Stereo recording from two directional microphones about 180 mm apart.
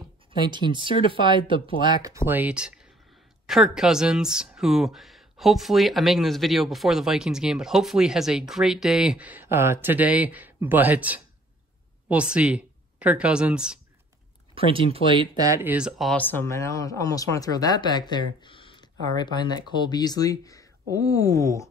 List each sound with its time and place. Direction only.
0.5 s speech: 25° right (ahead or behind); by 13.7 s 5° right (ahead or behind)
14.5 s speech: 30° right (ahead or behind); by 21.6 s 20° left (ahead or behind)